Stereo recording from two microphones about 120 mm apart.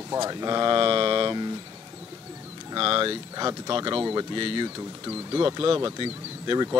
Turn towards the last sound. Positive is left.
turn(degrees=-40)  # may be behind; listen again after turning